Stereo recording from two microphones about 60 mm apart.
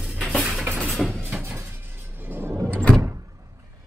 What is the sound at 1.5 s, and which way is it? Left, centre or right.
Music, right.